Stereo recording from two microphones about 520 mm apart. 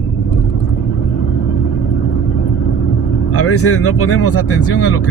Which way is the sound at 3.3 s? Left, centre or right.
Left.